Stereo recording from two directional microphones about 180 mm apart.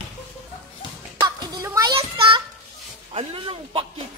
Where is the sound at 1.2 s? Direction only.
20° right (ahead or behind).